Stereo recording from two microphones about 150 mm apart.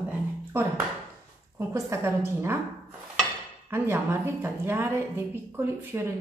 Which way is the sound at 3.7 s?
15° right (ahead or behind).